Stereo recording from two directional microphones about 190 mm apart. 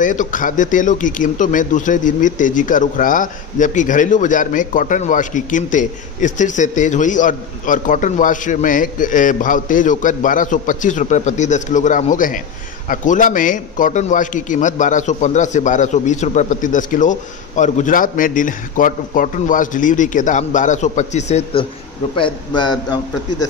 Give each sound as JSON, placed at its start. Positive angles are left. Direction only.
{"t": 0.0, "sound": "a man's voice", "side_deg": 40}
{"t": 22.1, "sound": "a man's voice", "side_deg": 25}